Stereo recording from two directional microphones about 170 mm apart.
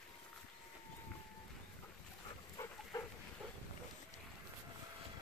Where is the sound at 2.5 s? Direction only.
20° left (ahead or behind).